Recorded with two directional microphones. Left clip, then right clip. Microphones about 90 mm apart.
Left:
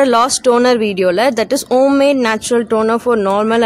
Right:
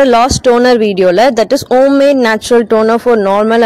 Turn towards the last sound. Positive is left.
turn(degrees=-40)  # may be behind; listen again after turning